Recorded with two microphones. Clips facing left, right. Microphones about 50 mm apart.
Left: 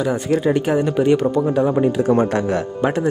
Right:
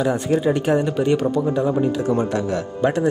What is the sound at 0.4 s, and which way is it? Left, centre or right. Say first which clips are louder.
Speech: left 1 dB; centre.